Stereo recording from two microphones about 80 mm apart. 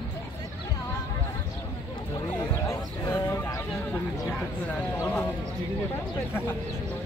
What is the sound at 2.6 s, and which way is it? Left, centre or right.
Livestock, left.